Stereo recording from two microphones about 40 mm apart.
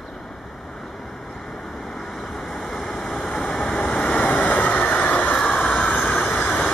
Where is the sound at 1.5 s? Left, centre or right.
Centre.